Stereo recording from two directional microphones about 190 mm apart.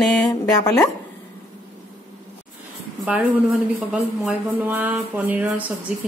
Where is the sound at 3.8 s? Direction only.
5° right (ahead or behind).